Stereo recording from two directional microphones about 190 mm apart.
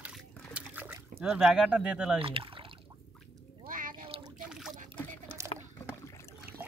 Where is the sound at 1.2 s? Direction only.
5° right (ahead or behind).